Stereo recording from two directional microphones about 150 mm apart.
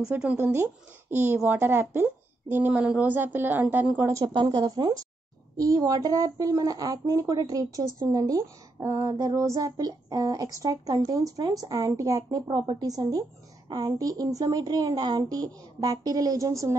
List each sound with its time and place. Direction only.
0.0 s a woman's voice: 10° right (ahead or behind)
4.3 s speech: 30° right (ahead or behind)
12.4 s speech: 35° right (ahead or behind)